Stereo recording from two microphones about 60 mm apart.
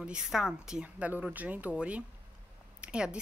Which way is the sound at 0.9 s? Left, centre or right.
Right.